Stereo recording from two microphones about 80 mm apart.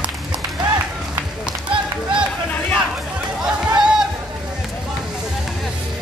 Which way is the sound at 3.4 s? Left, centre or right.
Centre.